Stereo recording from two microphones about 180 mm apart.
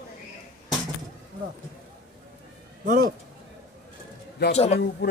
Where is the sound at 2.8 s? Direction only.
60° right (ahead or behind).